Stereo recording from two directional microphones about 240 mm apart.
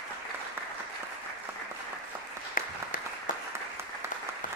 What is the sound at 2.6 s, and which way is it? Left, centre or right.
Applause, left.